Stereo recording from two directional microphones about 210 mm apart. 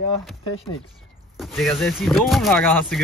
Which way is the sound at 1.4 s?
Centre (ahead or behind).